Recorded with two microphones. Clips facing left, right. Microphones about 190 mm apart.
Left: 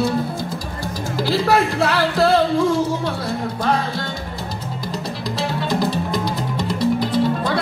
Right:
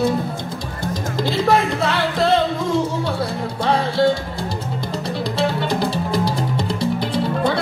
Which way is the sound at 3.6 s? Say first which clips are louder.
Right 7 dB; 30° right (ahead or behind).